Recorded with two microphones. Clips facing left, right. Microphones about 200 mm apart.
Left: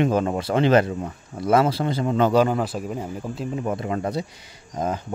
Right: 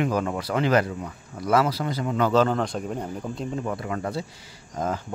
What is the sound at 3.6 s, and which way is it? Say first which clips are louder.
Speech: left 6 dB; 20° left (ahead or behind).